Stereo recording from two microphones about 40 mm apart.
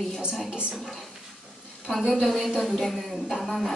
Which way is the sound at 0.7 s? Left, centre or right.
Centre.